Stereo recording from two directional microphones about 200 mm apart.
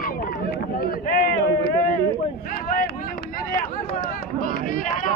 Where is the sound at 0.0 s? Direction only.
50° left (ahead or behind).